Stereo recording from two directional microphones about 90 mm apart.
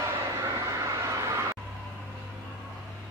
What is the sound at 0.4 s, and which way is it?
Vehicle, 40° right (ahead or behind).